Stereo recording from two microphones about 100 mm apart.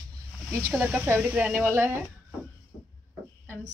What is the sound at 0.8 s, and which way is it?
A woman's voice, 10° right (ahead or behind).